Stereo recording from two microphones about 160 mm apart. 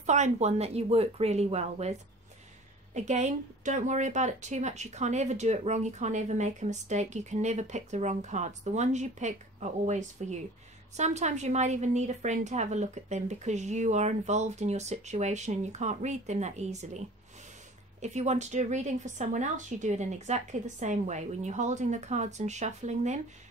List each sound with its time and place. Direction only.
0.0 s speech: 45° right (ahead or behind)
18.0 s speech: 45° right (ahead or behind)